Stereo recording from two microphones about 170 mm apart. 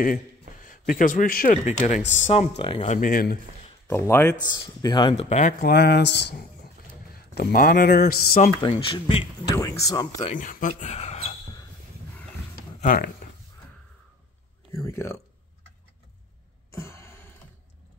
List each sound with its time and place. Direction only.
0.0 s a man's voice: 50° left (ahead or behind)
1.7 s speech: 45° left (ahead or behind)
3.0 s speech: 60° left (ahead or behind)
3.8 s speech: 15° left (ahead or behind)
5.6 s speech: 70° left (ahead or behind)
7.1 s speech: 60° left (ahead or behind)
8.6 s speech: 30° left (ahead or behind)
10.1 s speech: 45° left (ahead or behind)
12.8 s speech: 60° left (ahead or behind)
14.7 s speech: 15° left (ahead or behind)
16.7 s a sound: 15° left (ahead or behind)